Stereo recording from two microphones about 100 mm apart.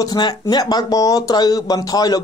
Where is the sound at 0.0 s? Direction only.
45° left (ahead or behind).